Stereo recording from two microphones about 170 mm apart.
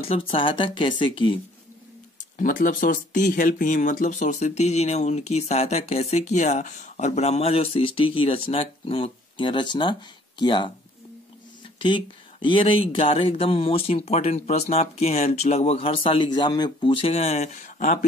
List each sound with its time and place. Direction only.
0.0 s speech: 35° left (ahead or behind)
2.1 s speech: 50° left (ahead or behind); by 10.7 s 30° left (ahead or behind)
11.8 s speech: 30° left (ahead or behind); by 17.9 s 45° left (ahead or behind)